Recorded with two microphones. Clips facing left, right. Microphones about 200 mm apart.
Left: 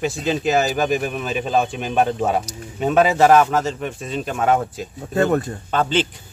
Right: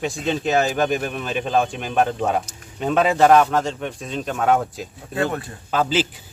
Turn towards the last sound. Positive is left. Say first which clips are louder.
# left 1 dB
turn(degrees=-5)  # may be behind; listen again after turning